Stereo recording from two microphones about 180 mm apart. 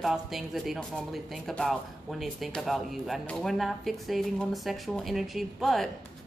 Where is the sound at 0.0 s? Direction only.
Centre (ahead or behind).